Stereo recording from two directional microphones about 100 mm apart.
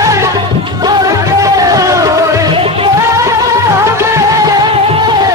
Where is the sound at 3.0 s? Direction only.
30° right (ahead or behind).